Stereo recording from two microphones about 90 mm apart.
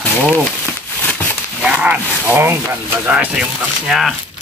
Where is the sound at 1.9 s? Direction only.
25° right (ahead or behind).